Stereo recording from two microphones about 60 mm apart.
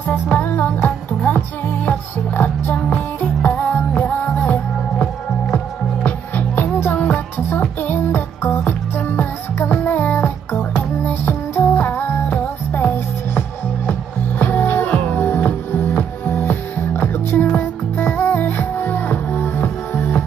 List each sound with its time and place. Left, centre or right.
0.3 s music: left
14.4 s music: left